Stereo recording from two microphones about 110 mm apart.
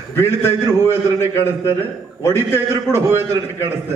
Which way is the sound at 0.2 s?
20° left (ahead or behind).